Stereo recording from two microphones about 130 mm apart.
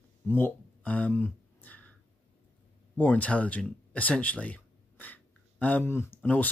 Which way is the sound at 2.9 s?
15° left (ahead or behind).